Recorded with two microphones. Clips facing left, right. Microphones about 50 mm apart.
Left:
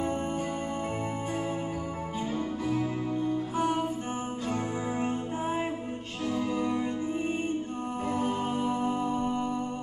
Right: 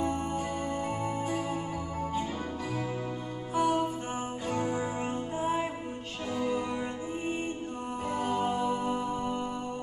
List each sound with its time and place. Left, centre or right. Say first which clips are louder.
0.0 s music: even; left
3.5 s music: right 4 dB; left
5.4 s music: right 2 dB; left
6.5 s music: left 2 dB; right
8.1 s music: right 1 dB; left